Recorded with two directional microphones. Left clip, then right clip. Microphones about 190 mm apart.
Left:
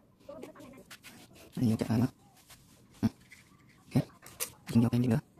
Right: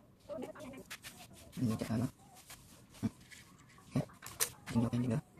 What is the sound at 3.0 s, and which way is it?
Dog, 60° left (ahead or behind).